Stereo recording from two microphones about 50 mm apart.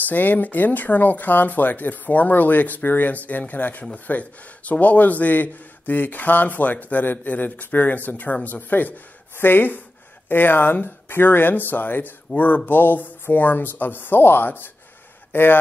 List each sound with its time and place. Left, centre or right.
0.0 s speech: left